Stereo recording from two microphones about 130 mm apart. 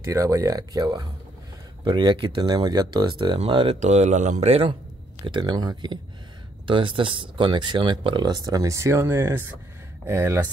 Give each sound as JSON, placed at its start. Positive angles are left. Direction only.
{"t": 0.1, "sound": "speech", "side_deg": -25}
{"t": 3.8, "sound": "speech", "side_deg": -65}
{"t": 5.2, "sound": "speech", "side_deg": -35}